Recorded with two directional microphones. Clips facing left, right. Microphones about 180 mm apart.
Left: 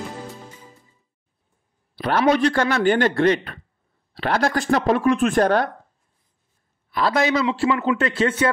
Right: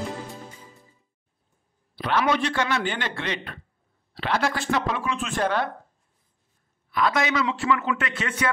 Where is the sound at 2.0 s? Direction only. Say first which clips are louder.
Left 6 dB; 40° left (ahead or behind).